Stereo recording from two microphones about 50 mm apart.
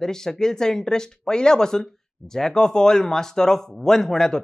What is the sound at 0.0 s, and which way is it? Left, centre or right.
Speech, centre.